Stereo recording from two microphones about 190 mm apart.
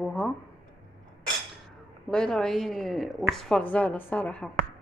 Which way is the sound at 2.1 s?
5° left (ahead or behind).